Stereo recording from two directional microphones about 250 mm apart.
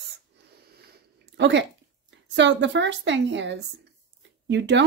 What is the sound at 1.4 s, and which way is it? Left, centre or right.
Speech, right.